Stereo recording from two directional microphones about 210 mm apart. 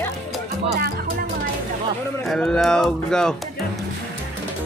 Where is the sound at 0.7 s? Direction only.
45° right (ahead or behind).